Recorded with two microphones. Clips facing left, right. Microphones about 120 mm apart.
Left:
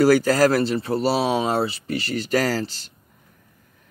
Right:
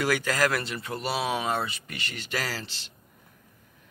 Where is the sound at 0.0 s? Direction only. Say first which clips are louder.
Left 10 dB; 35° left (ahead or behind).